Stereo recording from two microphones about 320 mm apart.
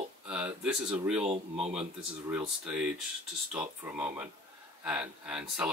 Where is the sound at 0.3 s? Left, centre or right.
Centre.